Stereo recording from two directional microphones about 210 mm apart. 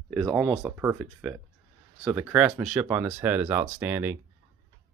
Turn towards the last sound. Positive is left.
turn(degrees=-10)  # may be behind; listen again after turning